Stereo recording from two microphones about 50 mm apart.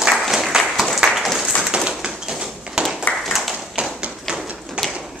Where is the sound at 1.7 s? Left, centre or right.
Centre.